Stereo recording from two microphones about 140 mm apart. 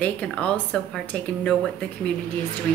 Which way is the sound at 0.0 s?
10° left (ahead or behind).